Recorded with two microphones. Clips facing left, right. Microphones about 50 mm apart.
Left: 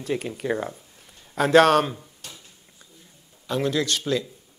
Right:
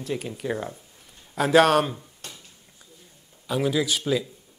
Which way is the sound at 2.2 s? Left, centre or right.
Right.